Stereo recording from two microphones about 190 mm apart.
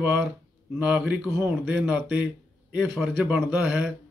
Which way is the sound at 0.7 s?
5° right (ahead or behind).